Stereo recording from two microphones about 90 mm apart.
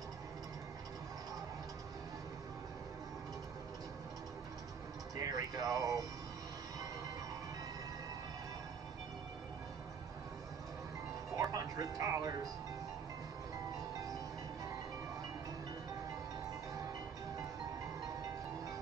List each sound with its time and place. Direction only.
5.1 s a sound: 40° right (ahead or behind)
11.3 s music: 40° right (ahead or behind)
13.9 s music: 40° right (ahead or behind)
18.0 s music: 40° right (ahead or behind)